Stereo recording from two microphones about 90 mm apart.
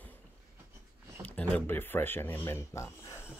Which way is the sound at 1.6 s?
25° left (ahead or behind).